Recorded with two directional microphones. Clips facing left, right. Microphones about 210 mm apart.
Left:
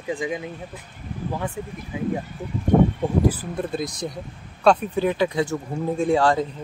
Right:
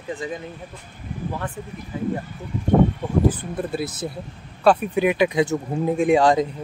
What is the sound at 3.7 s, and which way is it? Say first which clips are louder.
Speech: right 1 dB; 5° right (ahead or behind).